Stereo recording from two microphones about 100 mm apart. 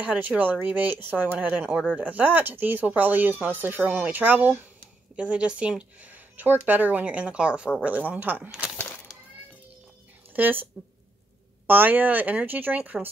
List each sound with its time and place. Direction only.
0.0 s speech: 15° right (ahead or behind)
8.5 s a sound: 5° right (ahead or behind)
10.3 s speech: 20° right (ahead or behind)